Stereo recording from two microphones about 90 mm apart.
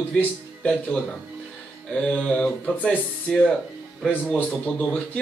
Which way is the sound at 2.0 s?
10° left (ahead or behind).